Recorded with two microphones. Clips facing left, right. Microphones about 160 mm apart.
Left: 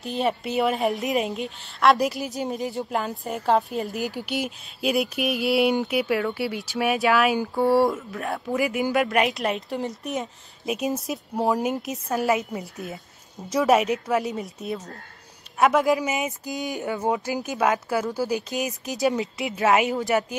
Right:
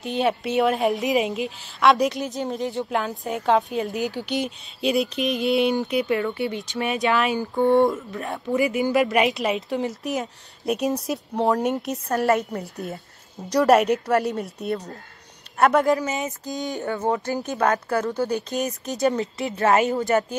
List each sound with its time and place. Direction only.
0.0 s a woman's voice: centre (ahead or behind)
16.0 s a woman's voice: 15° left (ahead or behind)